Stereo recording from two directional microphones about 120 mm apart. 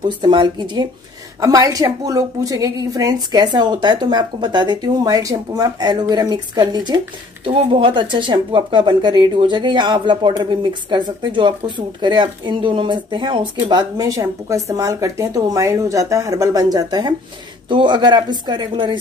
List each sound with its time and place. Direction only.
0.2 s speech: 40° right (ahead or behind)
1.4 s speech: 30° right (ahead or behind)